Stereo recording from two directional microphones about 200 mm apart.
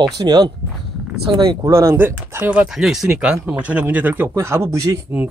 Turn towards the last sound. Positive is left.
turn(degrees=-10)  # may be behind; listen again after turning